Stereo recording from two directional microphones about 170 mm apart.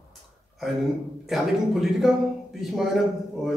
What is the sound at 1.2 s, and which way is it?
A man's voice, centre (ahead or behind).